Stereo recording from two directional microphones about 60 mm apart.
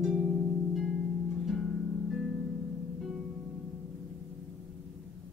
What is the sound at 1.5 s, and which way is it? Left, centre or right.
Music, centre.